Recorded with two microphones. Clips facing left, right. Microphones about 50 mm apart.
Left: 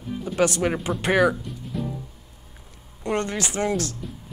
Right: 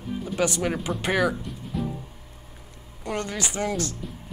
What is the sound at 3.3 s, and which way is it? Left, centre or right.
Speech, centre.